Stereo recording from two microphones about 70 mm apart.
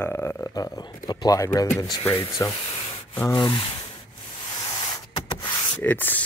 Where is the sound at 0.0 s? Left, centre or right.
Left.